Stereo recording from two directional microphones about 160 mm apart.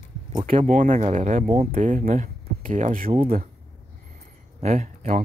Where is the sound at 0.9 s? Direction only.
45° right (ahead or behind).